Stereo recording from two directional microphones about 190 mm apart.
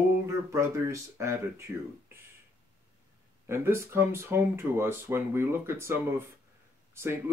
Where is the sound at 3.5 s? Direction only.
15° right (ahead or behind).